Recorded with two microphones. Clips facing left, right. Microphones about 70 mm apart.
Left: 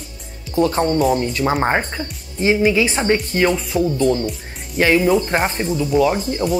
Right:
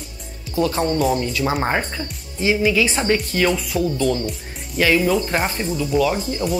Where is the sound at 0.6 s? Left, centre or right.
Left.